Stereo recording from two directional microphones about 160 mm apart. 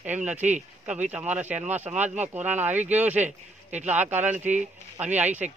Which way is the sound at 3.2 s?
45° right (ahead or behind).